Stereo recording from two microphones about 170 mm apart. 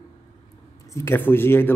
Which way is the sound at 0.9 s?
15° left (ahead or behind).